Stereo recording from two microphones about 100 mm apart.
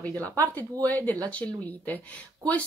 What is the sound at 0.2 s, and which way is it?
Speech, 15° left (ahead or behind).